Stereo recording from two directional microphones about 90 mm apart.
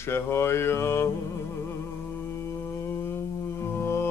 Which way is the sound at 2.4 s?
30° left (ahead or behind).